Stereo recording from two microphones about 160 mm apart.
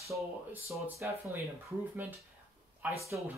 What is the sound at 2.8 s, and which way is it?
Speech, 10° right (ahead or behind).